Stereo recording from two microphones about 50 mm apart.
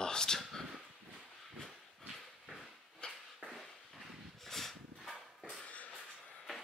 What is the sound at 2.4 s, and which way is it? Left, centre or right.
Dog, centre.